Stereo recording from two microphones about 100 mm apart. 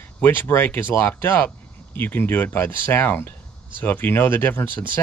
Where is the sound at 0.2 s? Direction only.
20° left (ahead or behind).